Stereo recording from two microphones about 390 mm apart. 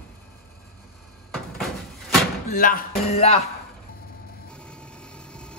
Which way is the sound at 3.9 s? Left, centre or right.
Left.